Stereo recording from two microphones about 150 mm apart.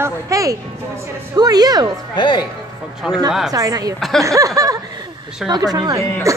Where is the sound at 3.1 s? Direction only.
Centre (ahead or behind).